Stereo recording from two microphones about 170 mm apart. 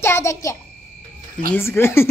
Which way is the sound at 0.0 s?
15° left (ahead or behind).